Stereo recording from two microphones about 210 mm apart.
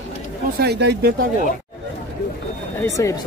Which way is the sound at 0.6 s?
50° right (ahead or behind).